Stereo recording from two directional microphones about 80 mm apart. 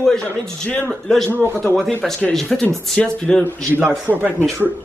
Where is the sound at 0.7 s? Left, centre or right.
Left.